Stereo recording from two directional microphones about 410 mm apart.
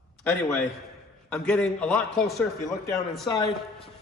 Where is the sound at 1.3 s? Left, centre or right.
Centre.